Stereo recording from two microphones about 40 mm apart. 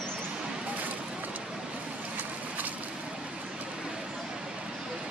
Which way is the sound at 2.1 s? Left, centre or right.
Right.